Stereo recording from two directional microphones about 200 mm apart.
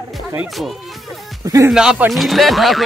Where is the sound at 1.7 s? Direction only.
5° right (ahead or behind).